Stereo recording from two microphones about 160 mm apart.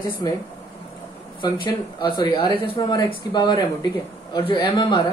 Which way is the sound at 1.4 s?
30° left (ahead or behind).